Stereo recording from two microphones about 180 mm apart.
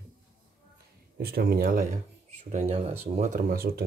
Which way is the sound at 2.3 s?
40° right (ahead or behind).